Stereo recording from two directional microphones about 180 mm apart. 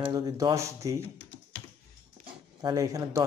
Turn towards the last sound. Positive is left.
turn(degrees=-20)  # may be behind; listen again after turning